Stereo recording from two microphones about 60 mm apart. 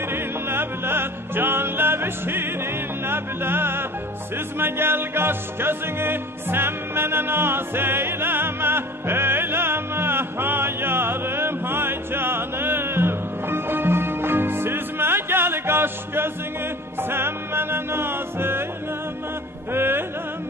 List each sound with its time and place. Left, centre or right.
0.1 s music: right
19.7 s music: right